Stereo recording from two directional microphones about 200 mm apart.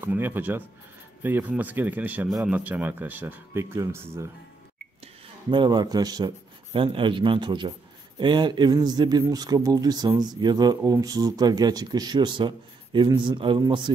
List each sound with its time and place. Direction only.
0.0 s speech: 10° right (ahead or behind)
5.5 s speech: 20° right (ahead or behind)